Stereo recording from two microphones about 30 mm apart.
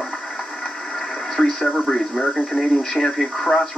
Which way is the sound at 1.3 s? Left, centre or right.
Centre.